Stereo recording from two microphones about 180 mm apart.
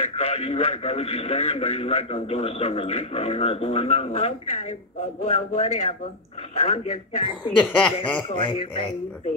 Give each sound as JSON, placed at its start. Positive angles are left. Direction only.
{"t": 0.0, "sound": "speech", "side_deg": 35}
{"t": 7.5, "sound": "speech", "side_deg": 5}
{"t": 8.2, "sound": "speech", "side_deg": 25}